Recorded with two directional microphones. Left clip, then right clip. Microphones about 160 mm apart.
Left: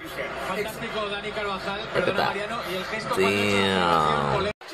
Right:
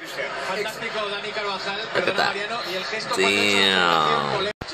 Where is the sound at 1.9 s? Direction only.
Centre (ahead or behind).